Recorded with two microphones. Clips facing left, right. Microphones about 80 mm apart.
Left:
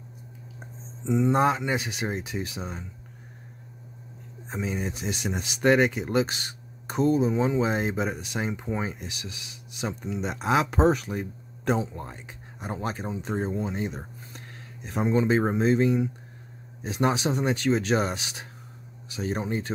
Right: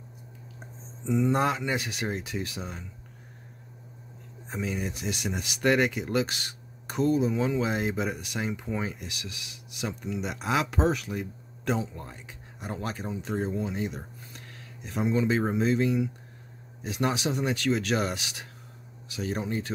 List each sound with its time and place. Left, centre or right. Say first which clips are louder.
1.0 s speech: left 3 dB; left
4.5 s speech: left 1 dB; left